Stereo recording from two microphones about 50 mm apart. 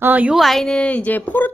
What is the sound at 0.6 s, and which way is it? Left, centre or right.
Speech, centre.